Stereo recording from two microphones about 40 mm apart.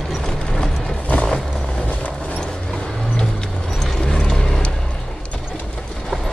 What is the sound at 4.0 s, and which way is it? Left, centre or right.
Vehicle, left.